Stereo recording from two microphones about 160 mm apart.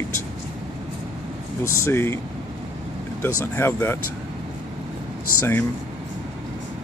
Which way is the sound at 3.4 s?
15° left (ahead or behind).